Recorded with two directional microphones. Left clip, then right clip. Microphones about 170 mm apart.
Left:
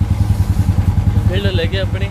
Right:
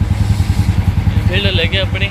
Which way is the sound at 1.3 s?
25° left (ahead or behind).